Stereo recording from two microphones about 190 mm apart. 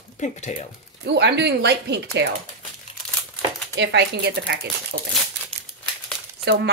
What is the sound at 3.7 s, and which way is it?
Speech, 65° right (ahead or behind).